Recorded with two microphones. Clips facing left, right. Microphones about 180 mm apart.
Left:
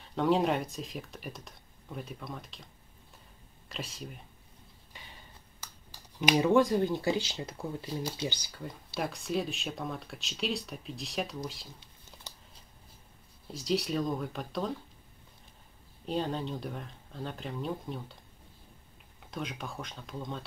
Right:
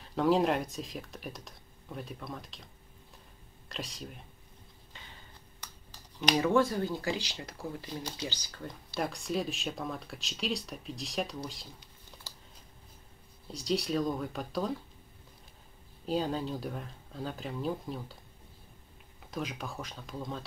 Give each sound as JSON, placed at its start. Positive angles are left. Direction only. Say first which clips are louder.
{"t": 0.0, "sound": "speech", "louder": "right 1 dB", "side_deg": 0}
{"t": 3.6, "sound": "speech", "louder": "even", "side_deg": 0}
{"t": 6.2, "sound": "speech", "louder": "left 2 dB", "side_deg": 15}
{"t": 8.5, "sound": "speech", "louder": "left 1 dB", "side_deg": 5}
{"t": 13.5, "sound": "speech", "louder": "even", "side_deg": 0}
{"t": 16.1, "sound": "speech", "louder": "right 1 dB", "side_deg": -5}
{"t": 19.3, "sound": "speech", "louder": "right 1 dB", "side_deg": 0}